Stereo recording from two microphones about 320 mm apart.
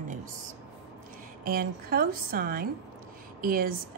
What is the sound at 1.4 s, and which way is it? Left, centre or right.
A woman's voice, right.